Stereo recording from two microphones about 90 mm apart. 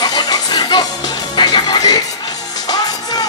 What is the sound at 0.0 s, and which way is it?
Music, 45° left (ahead or behind).